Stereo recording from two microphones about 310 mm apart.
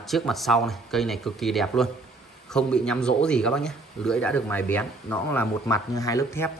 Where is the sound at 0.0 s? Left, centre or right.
Centre.